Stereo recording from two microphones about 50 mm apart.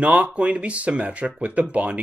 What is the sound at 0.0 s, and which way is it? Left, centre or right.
Speech, right.